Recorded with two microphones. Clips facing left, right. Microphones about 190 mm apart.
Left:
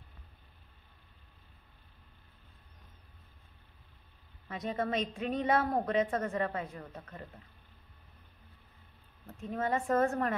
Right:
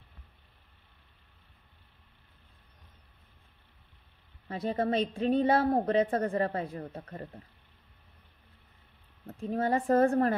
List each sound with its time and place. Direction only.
4.5 s a woman's voice: 30° right (ahead or behind)
9.3 s a woman's voice: 35° right (ahead or behind)